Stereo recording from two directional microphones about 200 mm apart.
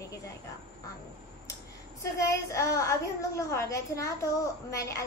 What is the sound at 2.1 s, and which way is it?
A woman's voice, 15° left (ahead or behind).